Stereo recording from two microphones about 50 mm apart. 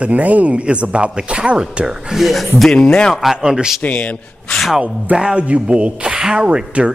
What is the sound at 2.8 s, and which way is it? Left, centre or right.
Speech, centre.